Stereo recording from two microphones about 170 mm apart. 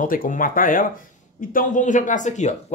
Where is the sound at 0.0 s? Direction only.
55° left (ahead or behind).